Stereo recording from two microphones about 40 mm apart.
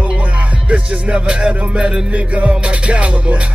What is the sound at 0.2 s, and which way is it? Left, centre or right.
Music, right.